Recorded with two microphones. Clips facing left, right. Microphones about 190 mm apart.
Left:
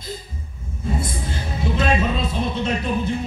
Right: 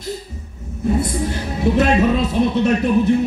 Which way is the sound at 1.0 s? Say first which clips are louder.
Right 6 dB; 65° right (ahead or behind).